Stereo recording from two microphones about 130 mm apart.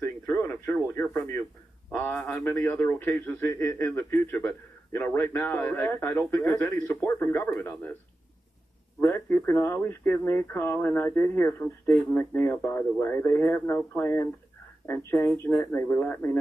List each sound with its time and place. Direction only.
0.0 s radio: 20° left (ahead or behind)
1.9 s speech: 10° left (ahead or behind)
9.0 s speech: 15° left (ahead or behind)